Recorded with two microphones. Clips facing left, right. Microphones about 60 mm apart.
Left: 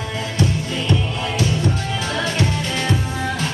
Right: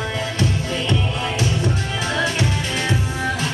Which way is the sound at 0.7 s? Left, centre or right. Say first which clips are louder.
Even; right.